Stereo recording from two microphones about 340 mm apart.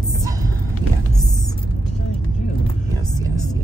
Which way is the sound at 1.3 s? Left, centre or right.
Centre.